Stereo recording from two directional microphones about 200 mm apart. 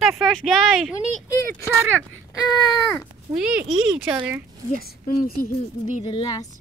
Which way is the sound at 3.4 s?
5° right (ahead or behind).